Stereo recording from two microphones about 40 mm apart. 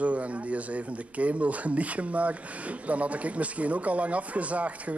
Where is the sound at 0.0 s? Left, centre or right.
Right.